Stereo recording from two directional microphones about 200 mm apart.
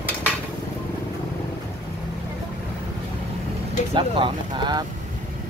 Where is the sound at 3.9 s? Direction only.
25° right (ahead or behind).